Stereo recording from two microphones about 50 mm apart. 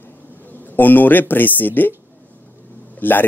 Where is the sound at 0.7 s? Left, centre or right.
Left.